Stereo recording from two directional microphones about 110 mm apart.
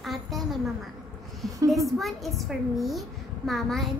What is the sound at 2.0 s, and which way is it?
A woman's voice, centre (ahead or behind).